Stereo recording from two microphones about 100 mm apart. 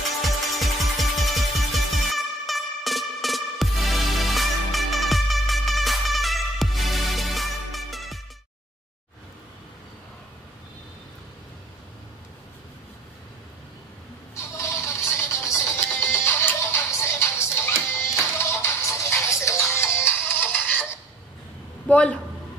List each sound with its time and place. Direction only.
0.2 s music: centre (ahead or behind)
14.3 s goat: 30° left (ahead or behind)
15.9 s music: 20° left (ahead or behind)
21.8 s a sound: 10° left (ahead or behind)